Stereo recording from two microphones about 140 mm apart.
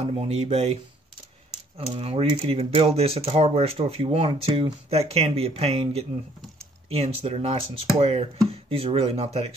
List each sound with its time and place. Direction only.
0.0 s speech: 50° right (ahead or behind)
1.8 s speech: 45° right (ahead or behind)